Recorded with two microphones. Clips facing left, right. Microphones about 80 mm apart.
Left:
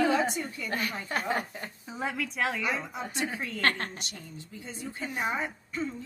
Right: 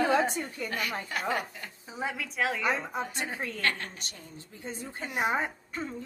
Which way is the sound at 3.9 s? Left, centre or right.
Right.